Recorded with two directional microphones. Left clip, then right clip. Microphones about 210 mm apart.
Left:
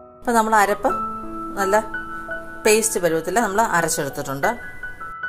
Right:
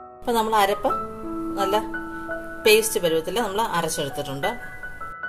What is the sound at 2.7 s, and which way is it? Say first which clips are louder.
Speech: even; 25° left (ahead or behind).